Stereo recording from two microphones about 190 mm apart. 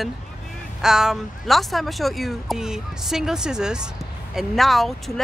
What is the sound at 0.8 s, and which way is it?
Speech, centre (ahead or behind).